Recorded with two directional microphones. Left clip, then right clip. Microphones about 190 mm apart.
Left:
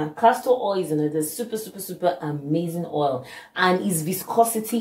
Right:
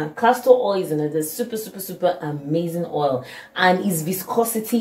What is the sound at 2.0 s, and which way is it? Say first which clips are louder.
Speech: right 2 dB; 20° left (ahead or behind).